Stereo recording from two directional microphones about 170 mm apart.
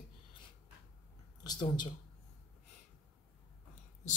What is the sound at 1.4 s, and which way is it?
Speech, 25° left (ahead or behind).